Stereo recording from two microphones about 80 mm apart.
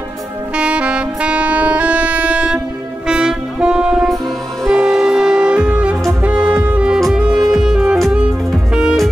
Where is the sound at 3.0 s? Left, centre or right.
Centre.